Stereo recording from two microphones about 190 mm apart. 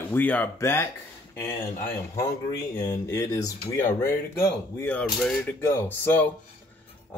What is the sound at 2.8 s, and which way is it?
Speech, 15° left (ahead or behind).